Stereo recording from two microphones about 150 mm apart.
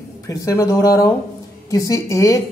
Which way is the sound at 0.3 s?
20° left (ahead or behind).